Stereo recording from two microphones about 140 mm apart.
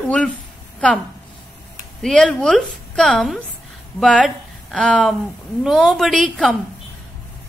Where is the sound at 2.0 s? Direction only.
5° left (ahead or behind).